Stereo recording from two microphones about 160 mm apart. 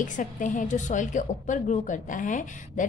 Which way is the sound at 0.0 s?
55° left (ahead or behind).